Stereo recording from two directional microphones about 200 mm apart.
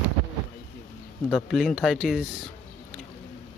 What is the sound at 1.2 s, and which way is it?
Speech, 5° left (ahead or behind).